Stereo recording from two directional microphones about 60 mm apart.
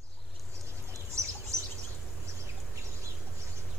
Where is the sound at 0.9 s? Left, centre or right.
Right.